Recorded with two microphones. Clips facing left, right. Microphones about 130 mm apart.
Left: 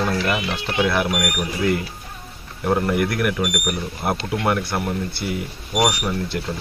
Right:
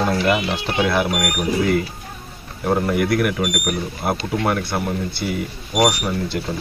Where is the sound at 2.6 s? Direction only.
5° right (ahead or behind).